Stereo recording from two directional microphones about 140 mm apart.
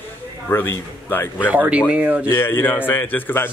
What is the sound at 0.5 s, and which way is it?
A man's voice, 15° left (ahead or behind).